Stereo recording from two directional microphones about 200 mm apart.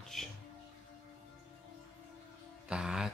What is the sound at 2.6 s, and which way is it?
Music, 5° right (ahead or behind).